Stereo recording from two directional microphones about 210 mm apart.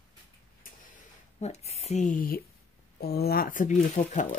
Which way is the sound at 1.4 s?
30° left (ahead or behind).